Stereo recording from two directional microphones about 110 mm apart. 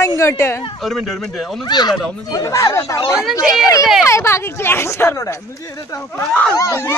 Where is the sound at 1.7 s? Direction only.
40° left (ahead or behind).